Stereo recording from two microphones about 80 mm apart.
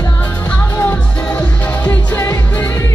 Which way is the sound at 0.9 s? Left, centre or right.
Centre.